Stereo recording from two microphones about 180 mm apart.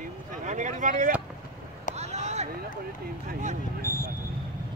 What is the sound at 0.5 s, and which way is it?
Speech, 45° right (ahead or behind).